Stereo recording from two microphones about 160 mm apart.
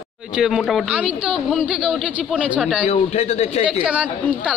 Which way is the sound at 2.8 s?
40° left (ahead or behind).